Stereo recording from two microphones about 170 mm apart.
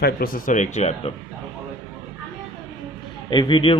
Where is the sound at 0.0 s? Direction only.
60° left (ahead or behind); by 1.1 s 40° left (ahead or behind).